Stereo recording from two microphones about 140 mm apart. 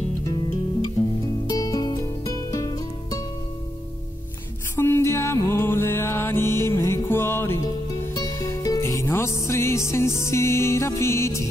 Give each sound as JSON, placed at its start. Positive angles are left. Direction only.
{"t": 1.2, "sound": "music", "side_deg": 25}
{"t": 4.7, "sound": "music", "side_deg": 20}
{"t": 7.6, "sound": "music", "side_deg": 25}